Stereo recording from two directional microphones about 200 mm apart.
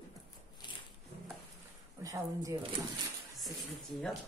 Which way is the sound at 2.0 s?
15° right (ahead or behind).